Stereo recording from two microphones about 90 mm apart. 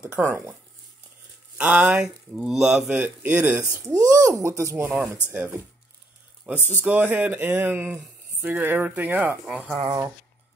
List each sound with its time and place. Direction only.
0.0 s speech: 15° right (ahead or behind)
1.6 s speech: 15° right (ahead or behind)
2.6 s speech: 15° right (ahead or behind)
3.7 s speech: 40° right (ahead or behind)
6.4 s speech: 20° right (ahead or behind)
9.8 s speech: 40° right (ahead or behind)